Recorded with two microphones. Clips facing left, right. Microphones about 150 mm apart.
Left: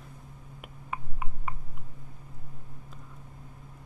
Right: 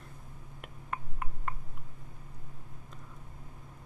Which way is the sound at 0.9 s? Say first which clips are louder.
Left 1 dB; 5° left (ahead or behind).